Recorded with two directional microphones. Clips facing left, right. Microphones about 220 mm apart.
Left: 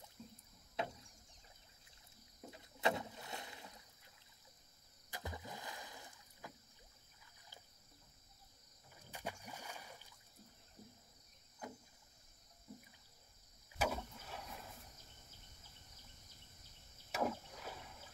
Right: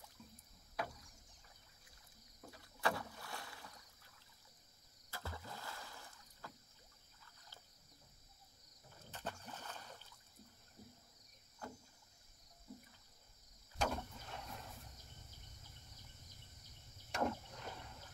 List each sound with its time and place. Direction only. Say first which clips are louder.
0.2 s rowboat: left 6 dB; 30° left (ahead or behind)
2.4 s rowboat: left 2 dB; 20° left (ahead or behind)
5.1 s rowboat: left 1 dB; 15° left (ahead or behind)
9.1 s rowboat: even; 10° left (ahead or behind)
11.6 s rowboat: left 1 dB; 15° left (ahead or behind)
13.7 s boat: left 1 dB; 5° left (ahead or behind)
17.1 s rowboat: even; 5° left (ahead or behind)